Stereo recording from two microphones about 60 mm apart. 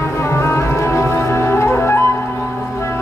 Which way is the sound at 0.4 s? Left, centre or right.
Left.